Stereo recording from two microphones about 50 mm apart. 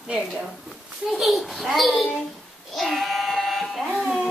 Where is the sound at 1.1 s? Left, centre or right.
Centre.